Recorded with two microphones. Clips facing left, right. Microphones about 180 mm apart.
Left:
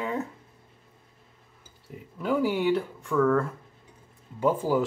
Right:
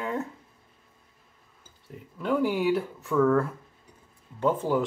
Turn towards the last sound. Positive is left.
turn(degrees=10)  # may be behind; listen again after turning